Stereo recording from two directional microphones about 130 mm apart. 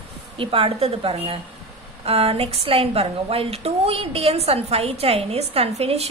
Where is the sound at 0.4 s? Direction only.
45° right (ahead or behind).